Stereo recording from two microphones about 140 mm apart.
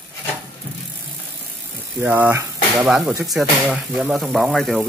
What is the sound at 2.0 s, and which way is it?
Speech, 10° right (ahead or behind).